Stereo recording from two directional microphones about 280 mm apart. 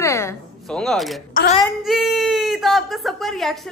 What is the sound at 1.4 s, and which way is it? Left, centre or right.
Speech, left.